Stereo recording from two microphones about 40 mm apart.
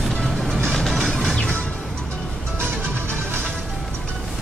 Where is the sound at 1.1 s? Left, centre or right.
Left.